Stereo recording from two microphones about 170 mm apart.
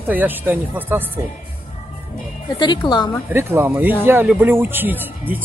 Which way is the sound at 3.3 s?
15° right (ahead or behind).